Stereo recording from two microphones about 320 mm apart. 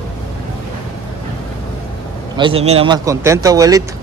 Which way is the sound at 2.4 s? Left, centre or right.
Centre.